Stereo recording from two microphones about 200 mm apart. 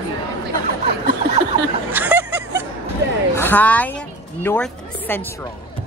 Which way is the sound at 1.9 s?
10° right (ahead or behind).